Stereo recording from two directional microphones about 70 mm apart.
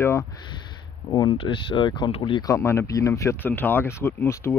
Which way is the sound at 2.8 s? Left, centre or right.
Left.